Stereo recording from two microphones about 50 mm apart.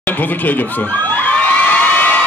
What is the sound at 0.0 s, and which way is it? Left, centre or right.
Speech, left.